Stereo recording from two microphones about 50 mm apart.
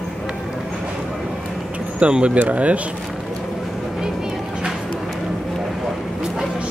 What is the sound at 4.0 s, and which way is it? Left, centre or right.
Vehicle, centre.